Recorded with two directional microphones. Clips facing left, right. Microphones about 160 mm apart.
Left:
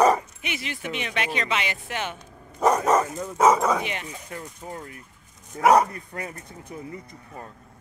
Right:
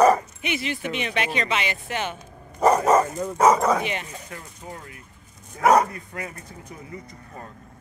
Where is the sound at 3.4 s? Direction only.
Centre (ahead or behind).